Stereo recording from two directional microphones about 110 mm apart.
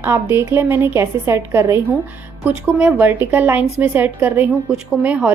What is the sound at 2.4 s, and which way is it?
A woman's voice, 15° right (ahead or behind).